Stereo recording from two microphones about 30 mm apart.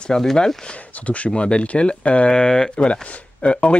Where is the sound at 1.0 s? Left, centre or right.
Left.